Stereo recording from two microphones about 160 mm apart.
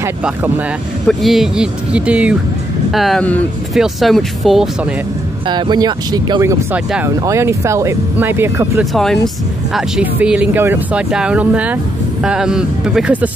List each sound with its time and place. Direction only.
1.0 s speech: centre (ahead or behind)
5.5 s speech: 25° right (ahead or behind)
6.4 s speech: 15° right (ahead or behind)
8.7 s speech: centre (ahead or behind)